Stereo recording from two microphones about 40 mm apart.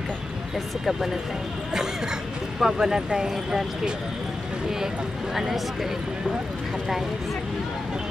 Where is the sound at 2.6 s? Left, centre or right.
Centre.